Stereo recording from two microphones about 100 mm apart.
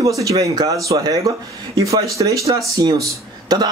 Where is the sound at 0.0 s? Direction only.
35° right (ahead or behind).